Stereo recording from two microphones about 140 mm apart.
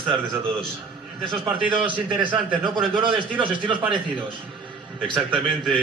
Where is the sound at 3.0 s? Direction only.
35° right (ahead or behind).